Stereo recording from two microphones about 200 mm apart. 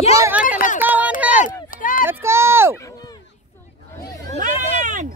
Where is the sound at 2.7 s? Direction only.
15° left (ahead or behind).